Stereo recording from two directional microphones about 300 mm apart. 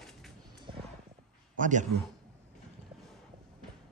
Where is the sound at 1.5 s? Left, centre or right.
Right.